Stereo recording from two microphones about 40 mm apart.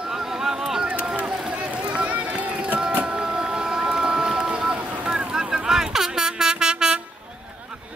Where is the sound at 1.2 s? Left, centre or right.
Right.